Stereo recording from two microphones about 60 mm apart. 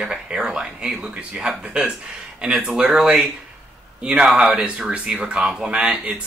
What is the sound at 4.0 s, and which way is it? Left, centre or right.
Speech, centre.